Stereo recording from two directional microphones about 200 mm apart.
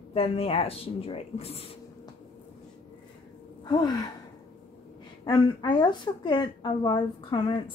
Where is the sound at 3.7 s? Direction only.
20° left (ahead or behind).